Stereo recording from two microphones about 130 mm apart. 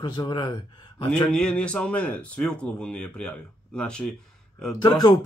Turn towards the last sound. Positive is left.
turn(degrees=35)  # may be behind; listen again after turning